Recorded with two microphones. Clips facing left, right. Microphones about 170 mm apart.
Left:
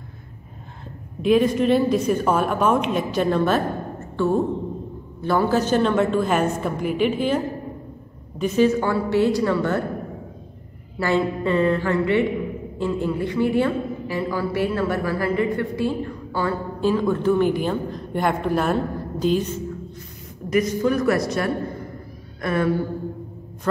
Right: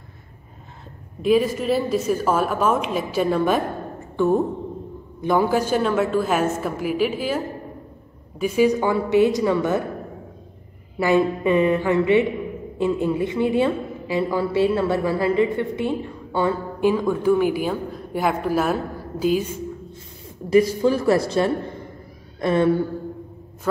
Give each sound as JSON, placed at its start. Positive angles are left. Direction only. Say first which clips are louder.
{"t": 1.2, "sound": "a woman's voice", "louder": "left 1 dB", "side_deg": -5}
{"t": 11.0, "sound": "a woman's voice", "louder": "right 3 dB", "side_deg": -15}
{"t": 20.4, "sound": "a woman's voice", "louder": "right 3 dB", "side_deg": -30}